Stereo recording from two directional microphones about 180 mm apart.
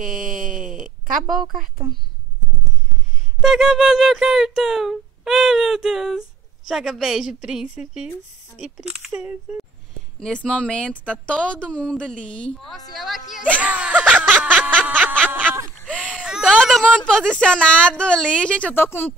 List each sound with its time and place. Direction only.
0.0 s wail: 45° right (ahead or behind)
1.2 s speech: centre (ahead or behind)
3.3 s speech: centre (ahead or behind)
10.2 s speech: 5° left (ahead or behind)
13.6 s snicker: 5° right (ahead or behind)
15.9 s speech: 5° right (ahead or behind); by 19.1 s 10° left (ahead or behind)